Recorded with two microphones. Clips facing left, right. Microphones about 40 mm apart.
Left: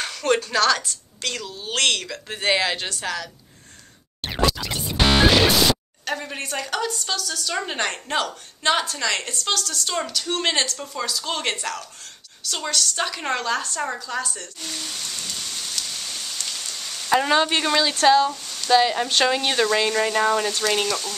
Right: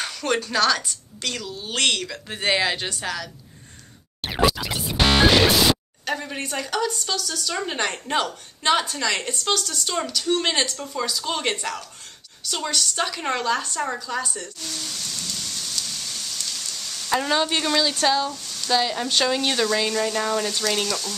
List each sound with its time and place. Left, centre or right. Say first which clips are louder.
0.0 s a woman's voice: left 3 dB; centre
4.4 s scratch: right 2 dB; centre
5.5 s a woman's voice: even; centre
14.6 s rain: left 1 dB; centre
18.0 s a woman's voice: left 5 dB; centre